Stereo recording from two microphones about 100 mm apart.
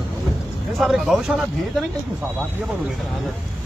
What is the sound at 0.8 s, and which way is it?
Speech, 5° right (ahead or behind).